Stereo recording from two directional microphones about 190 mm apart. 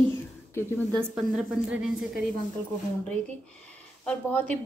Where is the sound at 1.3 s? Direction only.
5° right (ahead or behind).